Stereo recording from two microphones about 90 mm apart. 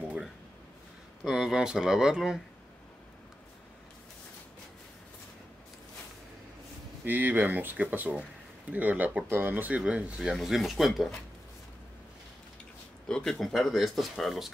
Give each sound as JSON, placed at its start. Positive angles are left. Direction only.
{"t": 1.2, "sound": "speech", "side_deg": -5}
{"t": 7.1, "sound": "speech", "side_deg": -20}
{"t": 13.1, "sound": "speech", "side_deg": 5}